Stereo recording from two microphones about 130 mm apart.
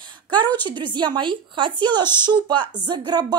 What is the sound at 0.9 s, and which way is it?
A woman's voice, 35° right (ahead or behind).